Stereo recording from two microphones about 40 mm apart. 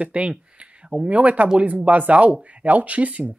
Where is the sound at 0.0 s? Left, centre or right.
Right.